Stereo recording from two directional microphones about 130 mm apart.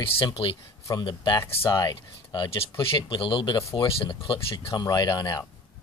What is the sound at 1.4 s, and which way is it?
Speech, 20° left (ahead or behind).